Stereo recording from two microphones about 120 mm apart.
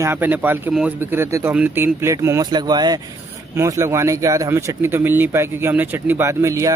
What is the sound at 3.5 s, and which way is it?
Speech, 25° right (ahead or behind).